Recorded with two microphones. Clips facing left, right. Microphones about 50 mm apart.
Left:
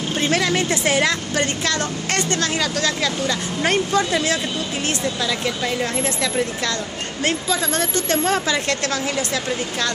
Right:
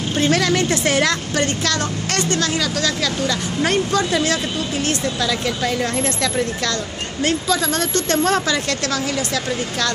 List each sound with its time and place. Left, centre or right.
0.3 s a woman's voice: centre
8.5 s a woman's voice: left